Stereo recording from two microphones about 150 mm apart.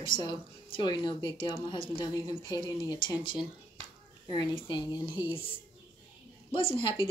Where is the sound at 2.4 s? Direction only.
20° right (ahead or behind).